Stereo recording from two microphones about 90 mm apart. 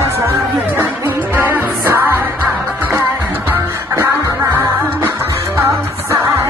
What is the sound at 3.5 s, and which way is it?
Music, 30° right (ahead or behind).